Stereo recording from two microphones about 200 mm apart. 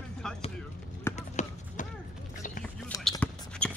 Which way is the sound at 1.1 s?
35° left (ahead or behind).